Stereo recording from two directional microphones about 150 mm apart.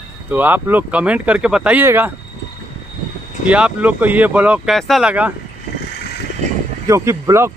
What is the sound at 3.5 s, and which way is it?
Speech, 10° right (ahead or behind).